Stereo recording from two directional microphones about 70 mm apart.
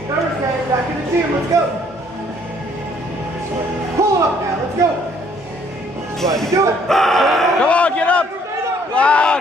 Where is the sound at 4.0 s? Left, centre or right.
Right.